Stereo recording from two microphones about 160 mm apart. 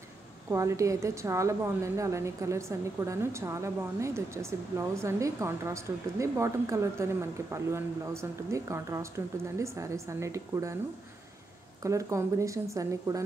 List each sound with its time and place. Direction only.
0.5 s a woman's voice: 20° right (ahead or behind)
11.8 s a woman's voice: 20° right (ahead or behind)